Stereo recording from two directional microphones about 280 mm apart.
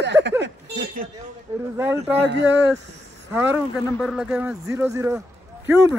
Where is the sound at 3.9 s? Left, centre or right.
Centre.